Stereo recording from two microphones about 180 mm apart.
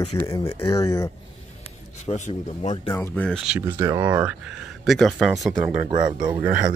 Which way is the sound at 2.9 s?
15° left (ahead or behind).